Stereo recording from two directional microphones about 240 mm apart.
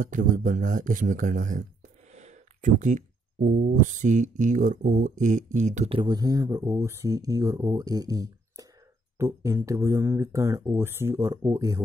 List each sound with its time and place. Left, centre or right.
0.0 s speech: right; by 11.8 s centre